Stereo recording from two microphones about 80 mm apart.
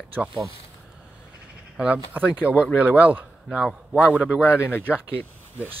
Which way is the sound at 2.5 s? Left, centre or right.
Centre.